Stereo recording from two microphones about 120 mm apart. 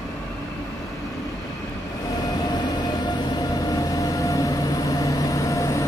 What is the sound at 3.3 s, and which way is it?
Vehicle, 30° left (ahead or behind).